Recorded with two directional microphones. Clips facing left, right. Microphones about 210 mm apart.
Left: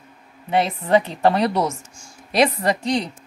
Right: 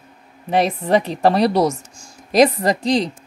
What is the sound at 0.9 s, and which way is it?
Speech, 35° right (ahead or behind).